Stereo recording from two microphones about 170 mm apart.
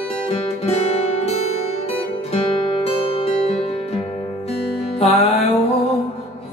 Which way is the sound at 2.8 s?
35° left (ahead or behind).